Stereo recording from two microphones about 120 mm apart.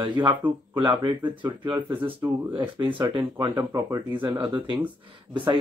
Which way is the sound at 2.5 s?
40° right (ahead or behind).